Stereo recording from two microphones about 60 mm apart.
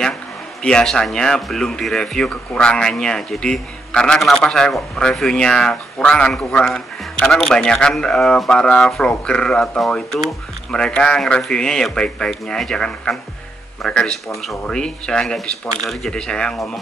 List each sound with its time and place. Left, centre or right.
0.7 s speech: centre
10.7 s speech: centre